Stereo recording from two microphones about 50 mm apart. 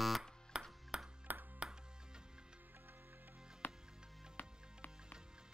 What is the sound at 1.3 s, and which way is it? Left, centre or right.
Ping, right.